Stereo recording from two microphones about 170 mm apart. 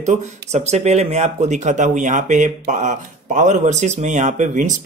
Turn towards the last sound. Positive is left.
turn(degrees=-45)  # may be behind; listen again after turning